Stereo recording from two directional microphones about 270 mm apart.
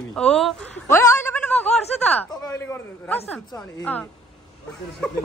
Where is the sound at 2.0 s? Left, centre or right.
Centre.